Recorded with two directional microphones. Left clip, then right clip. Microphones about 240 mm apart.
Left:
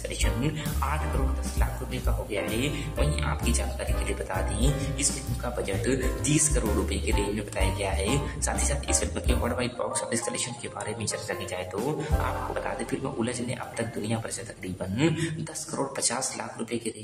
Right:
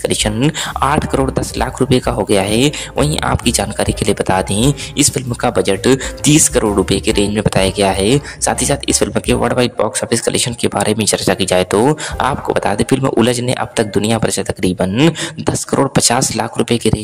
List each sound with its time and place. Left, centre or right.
0.0 s speech: right